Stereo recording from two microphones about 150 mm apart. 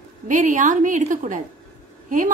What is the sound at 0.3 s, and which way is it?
A woman's voice, 55° right (ahead or behind).